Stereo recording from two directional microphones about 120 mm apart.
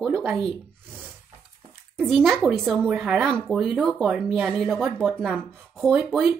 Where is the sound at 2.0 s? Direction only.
5° left (ahead or behind).